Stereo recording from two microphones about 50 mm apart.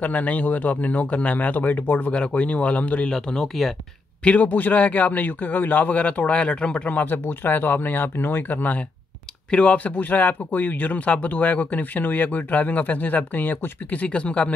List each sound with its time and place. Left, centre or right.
0.0 s speech: left
2.1 s speech: left
3.1 s speech: centre
4.2 s speech: left
6.9 s speech: left
9.5 s speech: left